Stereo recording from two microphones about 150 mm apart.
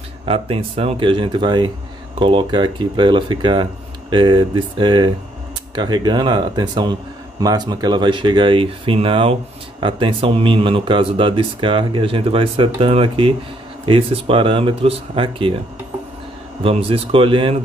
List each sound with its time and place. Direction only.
0.2 s speech: 40° right (ahead or behind)
16.6 s speech: 40° right (ahead or behind)